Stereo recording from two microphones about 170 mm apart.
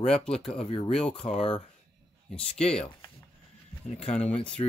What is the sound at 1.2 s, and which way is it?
Speech, 40° left (ahead or behind).